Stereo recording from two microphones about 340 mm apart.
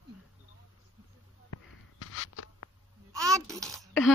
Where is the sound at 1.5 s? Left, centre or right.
Left.